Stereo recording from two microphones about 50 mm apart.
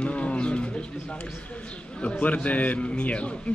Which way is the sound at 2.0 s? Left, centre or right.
Left.